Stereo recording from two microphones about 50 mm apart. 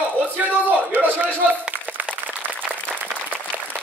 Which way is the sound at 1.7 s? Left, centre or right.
Right.